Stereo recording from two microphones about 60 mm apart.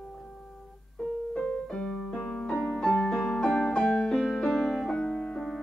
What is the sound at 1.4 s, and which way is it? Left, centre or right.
Music, centre.